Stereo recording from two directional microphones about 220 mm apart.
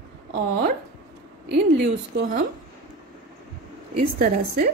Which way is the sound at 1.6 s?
50° right (ahead or behind).